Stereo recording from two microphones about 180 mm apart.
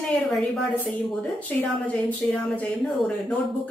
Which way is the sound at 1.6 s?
10° left (ahead or behind).